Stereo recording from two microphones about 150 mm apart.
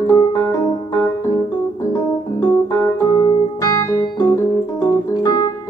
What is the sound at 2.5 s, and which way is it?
Organ, 20° left (ahead or behind).